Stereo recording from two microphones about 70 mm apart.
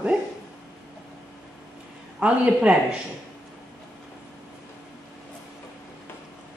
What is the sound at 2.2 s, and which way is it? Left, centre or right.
Speech, centre.